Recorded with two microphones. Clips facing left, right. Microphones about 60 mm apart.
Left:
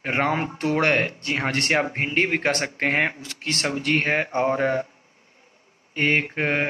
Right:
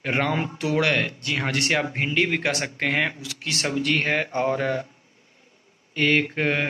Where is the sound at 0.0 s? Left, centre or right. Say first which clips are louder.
Left 1 dB; left.